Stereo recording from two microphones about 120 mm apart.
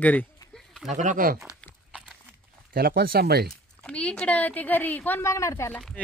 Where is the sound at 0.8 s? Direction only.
90° right.